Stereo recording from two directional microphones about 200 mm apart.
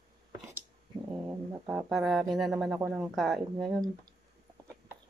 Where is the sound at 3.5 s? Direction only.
20° right (ahead or behind).